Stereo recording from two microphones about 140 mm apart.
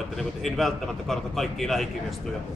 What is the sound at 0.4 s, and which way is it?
Speech, centre (ahead or behind).